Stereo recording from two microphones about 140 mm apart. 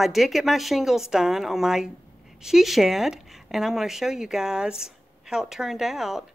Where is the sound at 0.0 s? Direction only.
Centre (ahead or behind).